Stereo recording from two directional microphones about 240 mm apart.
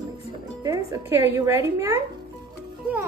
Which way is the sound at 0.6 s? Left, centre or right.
Centre.